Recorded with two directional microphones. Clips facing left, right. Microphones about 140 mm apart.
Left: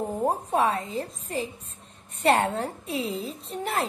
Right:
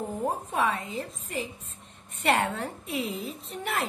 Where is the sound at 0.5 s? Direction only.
35° left (ahead or behind).